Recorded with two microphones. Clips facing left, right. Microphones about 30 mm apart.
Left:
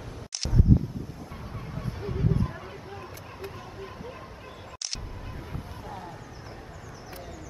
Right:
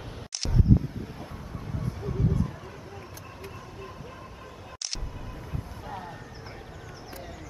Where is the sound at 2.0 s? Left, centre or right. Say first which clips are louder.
Left 1 dB; left.